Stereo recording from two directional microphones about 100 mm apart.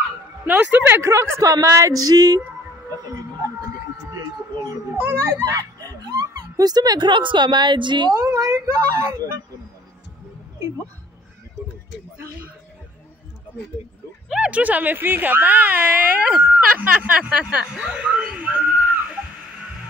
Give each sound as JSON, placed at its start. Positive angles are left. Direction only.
{"t": 0.5, "sound": "a woman's voice", "side_deg": -20}
{"t": 4.6, "sound": "children playing", "side_deg": -25}
{"t": 6.0, "sound": "a woman's voice", "side_deg": -40}
{"t": 8.2, "sound": "a sound", "side_deg": -35}
{"t": 8.5, "sound": "a woman's voice", "side_deg": -25}
{"t": 14.3, "sound": "speech", "side_deg": -10}